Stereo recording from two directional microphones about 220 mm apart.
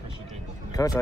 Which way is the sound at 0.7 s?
15° left (ahead or behind).